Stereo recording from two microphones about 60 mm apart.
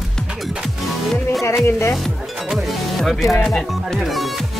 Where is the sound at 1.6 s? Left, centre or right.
Left.